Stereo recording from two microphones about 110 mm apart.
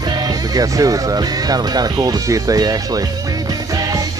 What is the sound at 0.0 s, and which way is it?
Speech, 35° right (ahead or behind).